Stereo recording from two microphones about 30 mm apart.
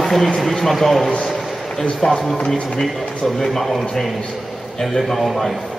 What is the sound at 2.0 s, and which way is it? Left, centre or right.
Speech, left.